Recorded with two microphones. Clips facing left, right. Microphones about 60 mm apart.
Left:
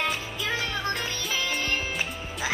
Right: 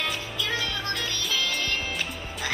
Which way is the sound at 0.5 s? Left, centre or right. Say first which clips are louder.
Left 2 dB; left.